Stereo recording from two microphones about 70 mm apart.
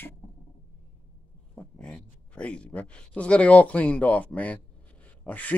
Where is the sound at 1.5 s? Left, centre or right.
Centre.